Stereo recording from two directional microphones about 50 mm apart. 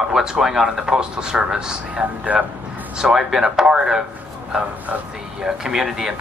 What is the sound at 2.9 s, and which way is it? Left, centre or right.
A man's voice, centre.